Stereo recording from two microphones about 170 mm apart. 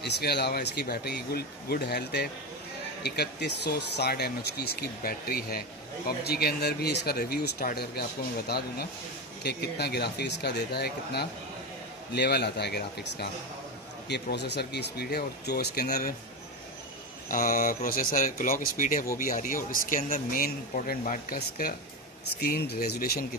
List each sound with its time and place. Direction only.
0.0 s speech: 75° left (ahead or behind); by 16.2 s 60° left (ahead or behind)
17.3 s speech: 55° left (ahead or behind)